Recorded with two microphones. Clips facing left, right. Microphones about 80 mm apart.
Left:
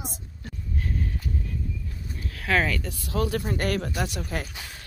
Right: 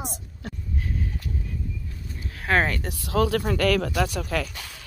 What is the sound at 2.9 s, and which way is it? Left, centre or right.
Speech, right.